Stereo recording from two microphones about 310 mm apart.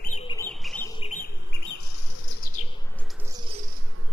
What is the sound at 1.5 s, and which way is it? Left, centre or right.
Bird, left.